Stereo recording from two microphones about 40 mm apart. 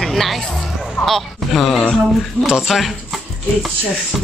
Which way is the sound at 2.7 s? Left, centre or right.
Centre.